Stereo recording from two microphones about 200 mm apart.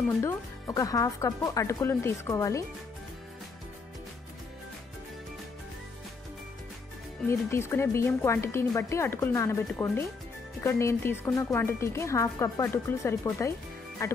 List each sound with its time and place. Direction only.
0.2 s a woman's voice: 15° left (ahead or behind)
7.2 s a woman's voice: 10° left (ahead or behind)